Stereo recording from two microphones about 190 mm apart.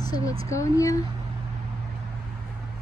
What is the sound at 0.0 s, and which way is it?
Speech, 20° left (ahead or behind).